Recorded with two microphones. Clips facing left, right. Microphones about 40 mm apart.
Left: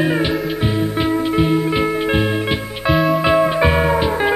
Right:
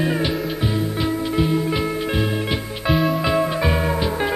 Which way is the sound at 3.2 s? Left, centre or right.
Left.